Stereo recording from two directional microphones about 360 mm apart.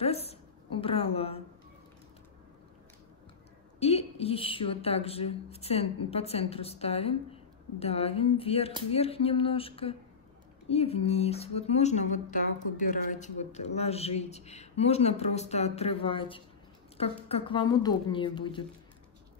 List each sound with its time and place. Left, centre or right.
0.0 s a woman's voice: centre
3.8 s a woman's voice: centre